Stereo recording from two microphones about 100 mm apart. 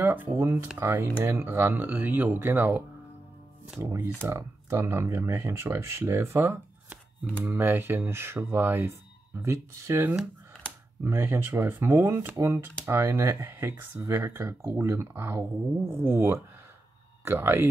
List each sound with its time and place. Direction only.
0.0 s speech: 20° right (ahead or behind)
3.8 s speech: 25° right (ahead or behind)